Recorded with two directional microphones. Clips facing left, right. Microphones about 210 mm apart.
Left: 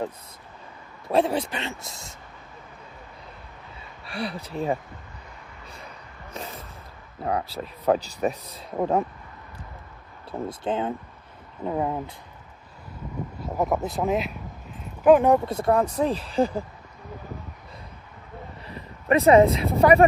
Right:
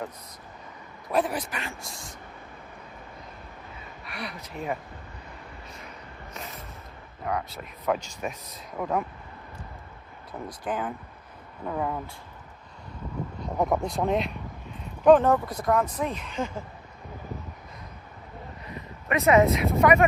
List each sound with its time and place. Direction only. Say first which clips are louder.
1.0 s a man's voice: left 4 dB; 25° left (ahead or behind)
4.0 s speech: left 7 dB; 30° left (ahead or behind)
7.2 s speech: left 4 dB; 30° left (ahead or behind)
10.5 s a man's voice: left 3 dB; 25° left (ahead or behind)
13.4 s speech: left 1 dB; 5° left (ahead or behind)
15.3 s speech: left 4 dB; 25° left (ahead or behind)
18.7 s speech: left 7 dB; 30° left (ahead or behind)